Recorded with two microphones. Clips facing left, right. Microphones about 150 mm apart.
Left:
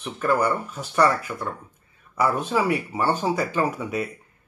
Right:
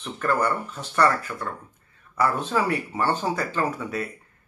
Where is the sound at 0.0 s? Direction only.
10° left (ahead or behind).